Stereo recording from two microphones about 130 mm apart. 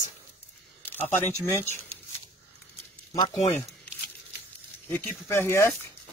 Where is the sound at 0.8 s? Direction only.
15° left (ahead or behind).